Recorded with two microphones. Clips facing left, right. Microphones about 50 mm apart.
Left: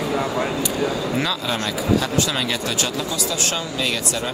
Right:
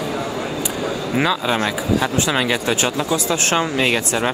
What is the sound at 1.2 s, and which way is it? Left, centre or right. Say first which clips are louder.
Speech: right 5 dB; right.